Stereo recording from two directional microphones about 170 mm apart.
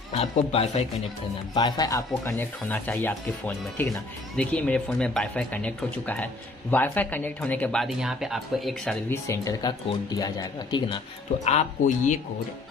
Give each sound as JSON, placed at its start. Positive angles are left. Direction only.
{"t": 0.1, "sound": "speech", "side_deg": 35}
{"t": 1.5, "sound": "speech", "side_deg": 20}
{"t": 9.1, "sound": "speech", "side_deg": 20}
{"t": 11.4, "sound": "speech", "side_deg": 45}